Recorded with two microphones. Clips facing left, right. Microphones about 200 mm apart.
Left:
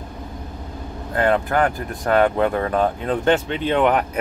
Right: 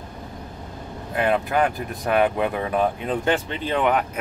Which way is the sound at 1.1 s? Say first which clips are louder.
Left 2 dB; 15° right (ahead or behind).